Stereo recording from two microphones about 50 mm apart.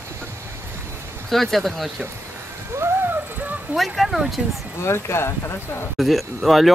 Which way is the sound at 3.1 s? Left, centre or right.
Right.